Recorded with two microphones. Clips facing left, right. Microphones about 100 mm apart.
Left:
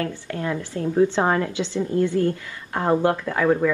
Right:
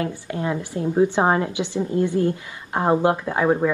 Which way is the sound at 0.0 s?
20° right (ahead or behind).